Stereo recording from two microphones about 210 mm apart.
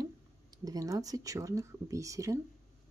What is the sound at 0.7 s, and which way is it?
Speech, 15° right (ahead or behind).